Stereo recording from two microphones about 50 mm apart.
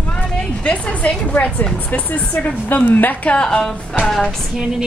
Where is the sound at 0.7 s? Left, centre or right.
Left.